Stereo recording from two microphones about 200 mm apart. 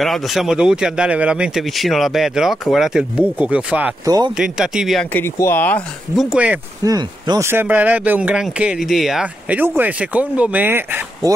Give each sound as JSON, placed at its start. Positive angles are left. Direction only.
{"t": 0.0, "sound": "speech", "side_deg": 0}
{"t": 4.0, "sound": "speech", "side_deg": -20}
{"t": 4.4, "sound": "speech", "side_deg": -5}
{"t": 5.1, "sound": "speech", "side_deg": 10}
{"t": 6.3, "sound": "speech", "side_deg": -5}
{"t": 6.8, "sound": "speech", "side_deg": -20}